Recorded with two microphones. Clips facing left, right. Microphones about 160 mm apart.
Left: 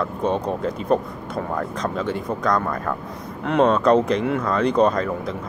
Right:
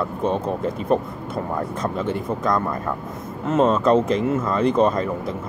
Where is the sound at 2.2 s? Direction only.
25° right (ahead or behind).